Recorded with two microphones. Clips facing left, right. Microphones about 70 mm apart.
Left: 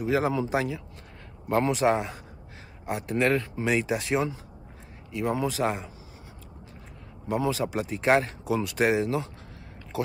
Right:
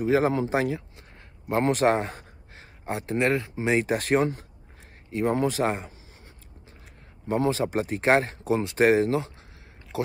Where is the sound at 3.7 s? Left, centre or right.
Right.